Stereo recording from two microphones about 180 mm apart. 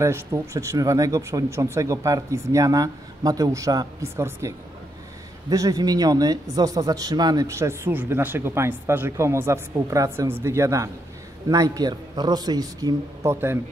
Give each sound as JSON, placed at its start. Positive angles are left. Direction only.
{"t": 0.0, "sound": "a man's voice", "side_deg": -15}